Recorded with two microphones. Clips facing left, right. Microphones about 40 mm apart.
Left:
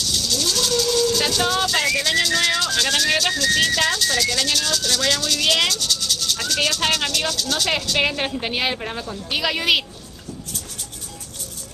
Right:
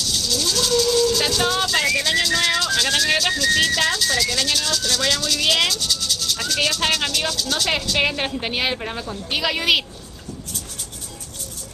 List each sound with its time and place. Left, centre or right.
0.1 s speech: centre